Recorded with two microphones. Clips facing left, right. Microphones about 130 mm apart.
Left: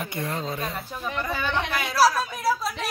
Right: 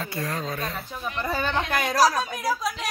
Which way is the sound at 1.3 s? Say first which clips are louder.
Right 3 dB; 45° right (ahead or behind).